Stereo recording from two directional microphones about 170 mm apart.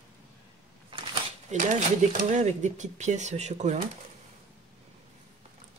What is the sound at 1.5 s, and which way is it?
Speech, 45° right (ahead or behind).